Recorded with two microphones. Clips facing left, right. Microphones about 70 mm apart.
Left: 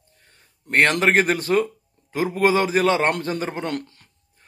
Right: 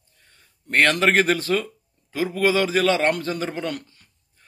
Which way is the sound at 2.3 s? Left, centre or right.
Left.